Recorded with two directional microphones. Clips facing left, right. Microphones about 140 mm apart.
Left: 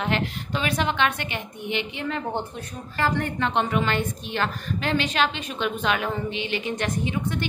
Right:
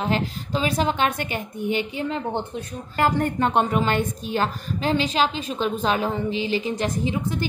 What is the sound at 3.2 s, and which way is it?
A woman's voice, 45° right (ahead or behind).